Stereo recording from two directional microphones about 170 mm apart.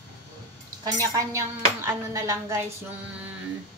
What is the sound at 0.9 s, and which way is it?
Speech, 20° right (ahead or behind).